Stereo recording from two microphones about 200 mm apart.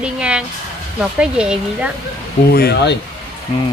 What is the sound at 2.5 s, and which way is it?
Speech, 55° left (ahead or behind).